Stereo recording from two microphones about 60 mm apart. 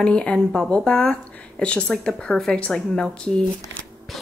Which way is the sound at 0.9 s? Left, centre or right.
Centre.